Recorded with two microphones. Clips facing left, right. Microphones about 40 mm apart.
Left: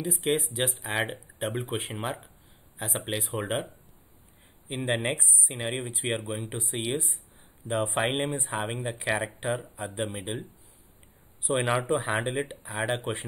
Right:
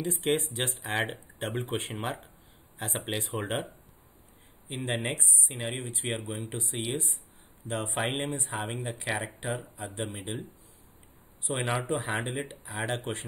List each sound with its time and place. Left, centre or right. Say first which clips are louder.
0.0 s speech: left 1 dB; centre
4.6 s speech: left 4 dB; centre
6.2 s speech: left 2 dB; centre
6.9 s speech: left 3 dB; left
11.4 s speech: left 4 dB; centre